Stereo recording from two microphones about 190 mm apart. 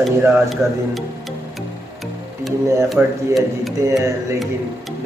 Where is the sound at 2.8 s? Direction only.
Centre (ahead or behind).